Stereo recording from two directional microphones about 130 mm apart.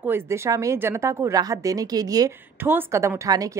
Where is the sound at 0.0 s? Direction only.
20° right (ahead or behind).